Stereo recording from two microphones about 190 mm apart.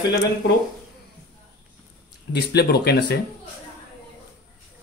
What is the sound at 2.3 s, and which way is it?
Speech, 60° left (ahead or behind).